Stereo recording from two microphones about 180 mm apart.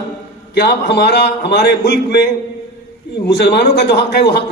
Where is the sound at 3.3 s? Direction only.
65° left (ahead or behind).